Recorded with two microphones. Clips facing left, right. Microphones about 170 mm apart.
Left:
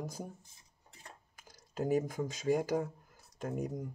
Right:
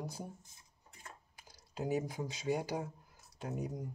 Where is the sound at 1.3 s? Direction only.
45° left (ahead or behind).